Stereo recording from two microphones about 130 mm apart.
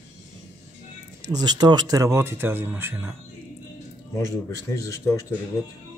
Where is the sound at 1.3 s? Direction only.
30° right (ahead or behind).